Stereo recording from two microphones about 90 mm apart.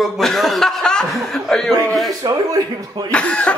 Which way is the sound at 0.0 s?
Centre (ahead or behind).